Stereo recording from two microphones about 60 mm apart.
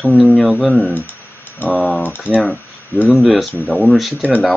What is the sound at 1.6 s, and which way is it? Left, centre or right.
Speech, left.